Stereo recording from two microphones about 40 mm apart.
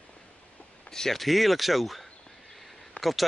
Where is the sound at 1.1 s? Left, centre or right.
Centre.